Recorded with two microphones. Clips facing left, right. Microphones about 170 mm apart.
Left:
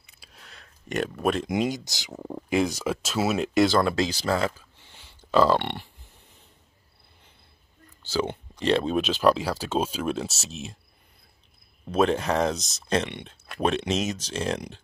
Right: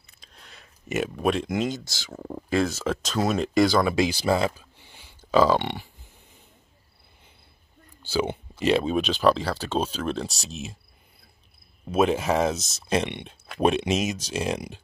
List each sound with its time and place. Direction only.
0.0 s a sound: 5° left (ahead or behind)
1.5 s speech: 15° left (ahead or behind)
2.1 s speech: centre (ahead or behind)
2.5 s speech: 15° left (ahead or behind); by 5.9 s centre (ahead or behind)
8.0 s speech: 10° right (ahead or behind)
11.9 s speech: 5° right (ahead or behind)